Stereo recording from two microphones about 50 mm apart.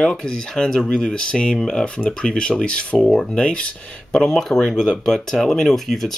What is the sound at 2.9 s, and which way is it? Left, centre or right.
Speech, centre.